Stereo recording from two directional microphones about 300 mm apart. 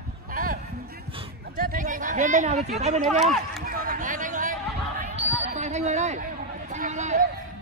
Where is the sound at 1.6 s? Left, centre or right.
Right.